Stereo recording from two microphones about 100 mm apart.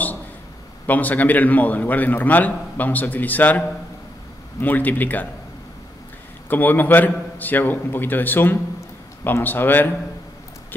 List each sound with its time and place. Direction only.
0.8 s a man's voice: 15° left (ahead or behind)
6.5 s a man's voice: 20° left (ahead or behind)